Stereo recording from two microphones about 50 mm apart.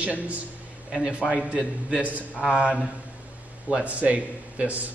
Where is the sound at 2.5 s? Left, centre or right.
Right.